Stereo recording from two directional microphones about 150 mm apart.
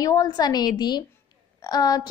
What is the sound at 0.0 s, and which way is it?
A woman's voice, 25° left (ahead or behind).